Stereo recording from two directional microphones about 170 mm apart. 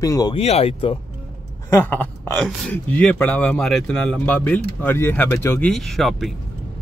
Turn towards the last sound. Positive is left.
turn(degrees=0)  # may be behind; listen again after turning